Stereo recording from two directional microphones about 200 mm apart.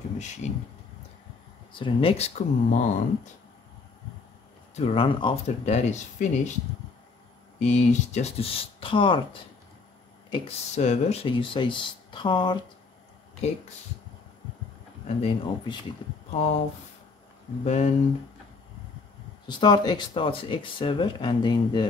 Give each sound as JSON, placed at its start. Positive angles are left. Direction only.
{"t": 0.2, "sound": "speech", "side_deg": 35}
{"t": 1.7, "sound": "speech", "side_deg": 25}
{"t": 4.7, "sound": "speech", "side_deg": 30}
{"t": 7.5, "sound": "speech", "side_deg": 35}
{"t": 15.0, "sound": "speech", "side_deg": 30}
{"t": 17.6, "sound": "speech", "side_deg": 35}
{"t": 19.4, "sound": "speech", "side_deg": 20}